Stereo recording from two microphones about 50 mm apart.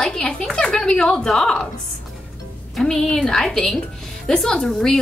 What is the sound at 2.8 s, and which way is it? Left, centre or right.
A woman's voice, centre.